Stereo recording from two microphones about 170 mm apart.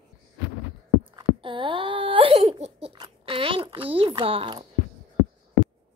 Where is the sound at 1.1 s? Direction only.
30° right (ahead or behind).